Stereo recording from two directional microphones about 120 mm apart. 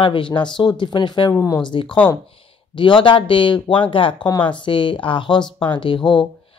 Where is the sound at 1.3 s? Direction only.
25° left (ahead or behind).